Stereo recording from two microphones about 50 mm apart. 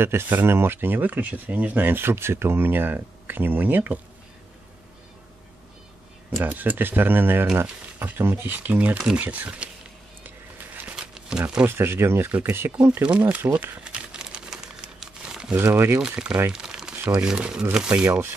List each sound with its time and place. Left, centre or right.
0.0 s speech: right
2.0 s speech: right
6.4 s speech: right
8.5 s speech: right
8.9 s speech: centre
9.2 s speech: right
11.0 s a sound: centre
11.6 s speech: right
12.9 s speech: right
13.8 s crumpling: centre
15.6 s speech: right
16.0 s speech: centre
16.5 s crumpling: centre
17.1 s speech: centre